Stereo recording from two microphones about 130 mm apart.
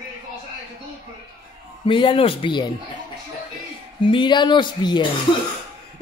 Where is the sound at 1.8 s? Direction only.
40° left (ahead or behind).